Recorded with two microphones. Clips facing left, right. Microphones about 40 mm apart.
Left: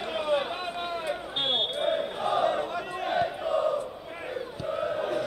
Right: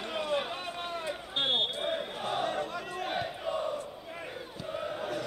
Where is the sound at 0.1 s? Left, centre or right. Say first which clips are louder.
Left 5 dB; centre.